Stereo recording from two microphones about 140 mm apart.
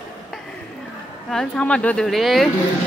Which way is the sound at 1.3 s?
5° left (ahead or behind).